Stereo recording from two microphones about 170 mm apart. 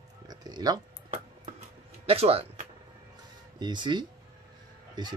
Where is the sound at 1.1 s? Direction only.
40° right (ahead or behind).